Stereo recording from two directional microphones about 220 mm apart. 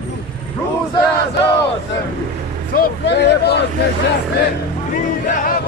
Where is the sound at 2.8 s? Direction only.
50° left (ahead or behind).